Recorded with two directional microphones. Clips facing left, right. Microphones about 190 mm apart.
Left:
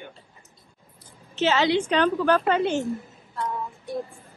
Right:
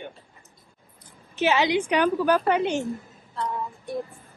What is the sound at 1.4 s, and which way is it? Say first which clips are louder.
A woman's voice: even; 15° right (ahead or behind).